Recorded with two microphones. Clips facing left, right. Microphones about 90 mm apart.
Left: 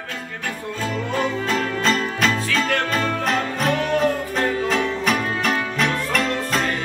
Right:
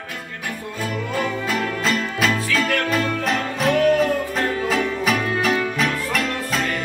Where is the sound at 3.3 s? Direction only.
Centre (ahead or behind).